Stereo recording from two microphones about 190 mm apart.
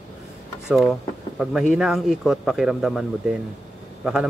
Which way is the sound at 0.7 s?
Centre (ahead or behind).